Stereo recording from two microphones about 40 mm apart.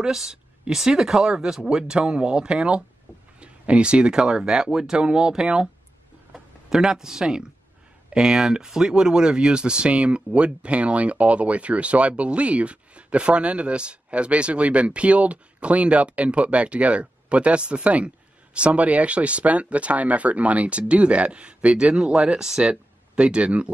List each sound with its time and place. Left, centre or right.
0.0 s speech: centre
1.3 s speech: centre